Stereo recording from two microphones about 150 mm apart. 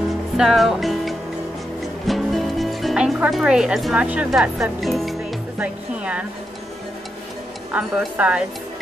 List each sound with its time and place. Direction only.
0.4 s music: centre (ahead or behind)
2.0 s speech: centre (ahead or behind)
7.7 s speech: 10° right (ahead or behind)